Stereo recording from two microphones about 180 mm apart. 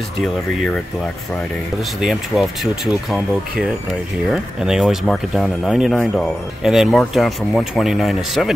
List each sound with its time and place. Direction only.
2.0 s speech: centre (ahead or behind)